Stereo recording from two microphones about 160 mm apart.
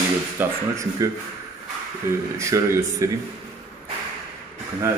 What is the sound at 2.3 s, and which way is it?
Speech, 20° right (ahead or behind).